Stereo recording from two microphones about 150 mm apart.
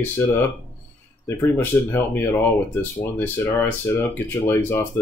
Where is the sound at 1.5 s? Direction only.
15° left (ahead or behind).